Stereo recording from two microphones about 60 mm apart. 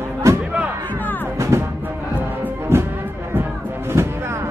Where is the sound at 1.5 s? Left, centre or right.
Right.